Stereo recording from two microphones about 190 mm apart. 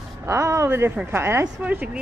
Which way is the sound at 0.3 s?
15° right (ahead or behind).